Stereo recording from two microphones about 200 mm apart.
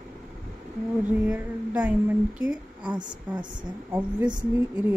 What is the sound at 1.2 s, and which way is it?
Speech, 10° right (ahead or behind).